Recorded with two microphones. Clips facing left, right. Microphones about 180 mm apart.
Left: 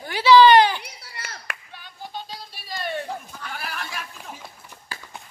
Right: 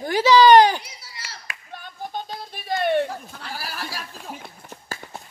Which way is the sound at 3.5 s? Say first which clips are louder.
Right 1 dB; 35° right (ahead or behind).